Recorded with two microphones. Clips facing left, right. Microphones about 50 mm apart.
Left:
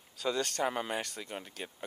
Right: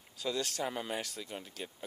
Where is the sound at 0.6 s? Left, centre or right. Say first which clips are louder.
Left 4 dB; centre.